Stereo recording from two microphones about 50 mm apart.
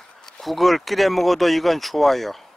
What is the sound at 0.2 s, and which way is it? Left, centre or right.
Speech, centre.